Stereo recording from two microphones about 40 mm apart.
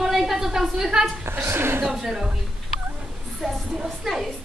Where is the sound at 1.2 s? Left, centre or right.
Right.